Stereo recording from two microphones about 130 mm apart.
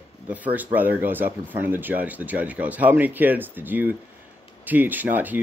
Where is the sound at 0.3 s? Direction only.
10° right (ahead or behind).